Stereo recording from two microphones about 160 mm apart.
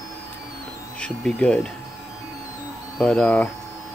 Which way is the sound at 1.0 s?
5° left (ahead or behind).